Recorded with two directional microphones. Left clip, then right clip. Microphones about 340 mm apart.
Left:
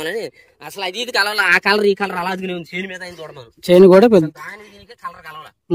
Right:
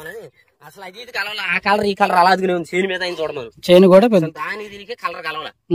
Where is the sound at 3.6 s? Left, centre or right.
Centre.